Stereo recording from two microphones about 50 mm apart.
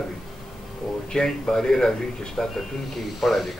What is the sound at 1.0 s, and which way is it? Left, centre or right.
Speech, centre.